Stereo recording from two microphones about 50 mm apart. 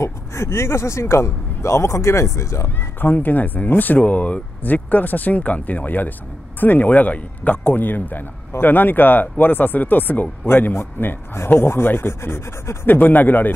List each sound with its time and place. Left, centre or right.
0.0 s speech: left
3.0 s speech: left
7.6 s a man's voice: left
12.8 s speech: left